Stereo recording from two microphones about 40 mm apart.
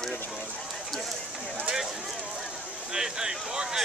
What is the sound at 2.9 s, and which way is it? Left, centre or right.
Speech, centre.